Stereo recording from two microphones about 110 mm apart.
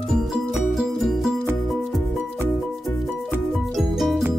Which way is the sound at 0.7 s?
5° right (ahead or behind).